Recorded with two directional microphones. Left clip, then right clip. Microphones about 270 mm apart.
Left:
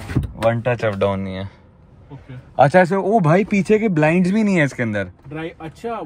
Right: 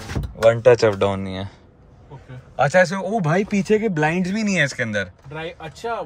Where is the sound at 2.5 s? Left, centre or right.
Centre.